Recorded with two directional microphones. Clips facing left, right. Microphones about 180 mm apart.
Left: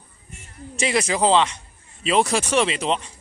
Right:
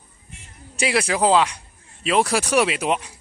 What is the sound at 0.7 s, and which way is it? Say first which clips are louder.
Speech: even; centre (ahead or behind).